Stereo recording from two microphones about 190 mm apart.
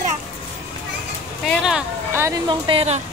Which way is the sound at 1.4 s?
Centre (ahead or behind).